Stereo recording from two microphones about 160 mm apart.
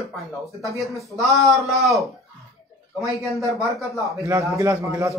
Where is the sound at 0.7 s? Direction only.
Centre (ahead or behind).